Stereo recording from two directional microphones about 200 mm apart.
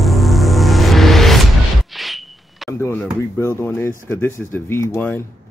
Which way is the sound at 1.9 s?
Centre (ahead or behind).